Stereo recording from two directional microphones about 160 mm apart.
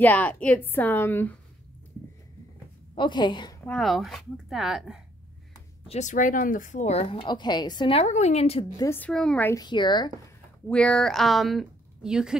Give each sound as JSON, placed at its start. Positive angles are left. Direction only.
{"t": 0.0, "sound": "a woman's voice", "side_deg": 10}
{"t": 2.9, "sound": "a woman's voice", "side_deg": 30}
{"t": 3.6, "sound": "a woman's voice", "side_deg": 5}
{"t": 5.9, "sound": "speech", "side_deg": 50}
{"t": 8.0, "sound": "a woman's voice", "side_deg": 45}
{"t": 8.7, "sound": "a woman's voice", "side_deg": 15}
{"t": 9.5, "sound": "speech", "side_deg": 25}
{"t": 10.7, "sound": "a woman's voice", "side_deg": 5}